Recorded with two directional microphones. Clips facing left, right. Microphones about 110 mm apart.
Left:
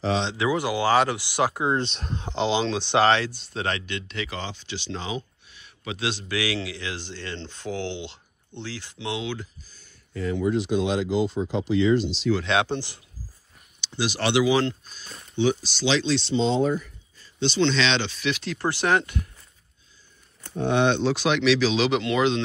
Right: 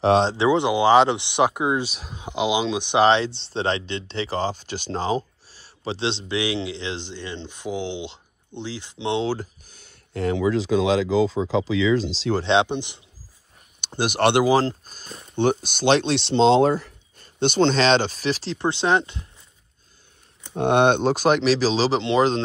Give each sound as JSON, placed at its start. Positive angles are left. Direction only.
{"t": 0.4, "sound": "speech", "side_deg": -25}
{"t": 9.7, "sound": "speech", "side_deg": -70}
{"t": 12.4, "sound": "speech", "side_deg": -30}
{"t": 13.7, "sound": "speech", "side_deg": -50}
{"t": 14.5, "sound": "speech", "side_deg": -35}
{"t": 15.3, "sound": "speech", "side_deg": -55}
{"t": 17.4, "sound": "speech", "side_deg": -50}
{"t": 20.5, "sound": "speech", "side_deg": -60}